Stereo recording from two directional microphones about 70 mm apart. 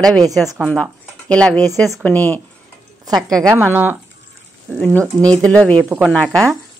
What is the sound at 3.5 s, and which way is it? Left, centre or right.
Speech, right.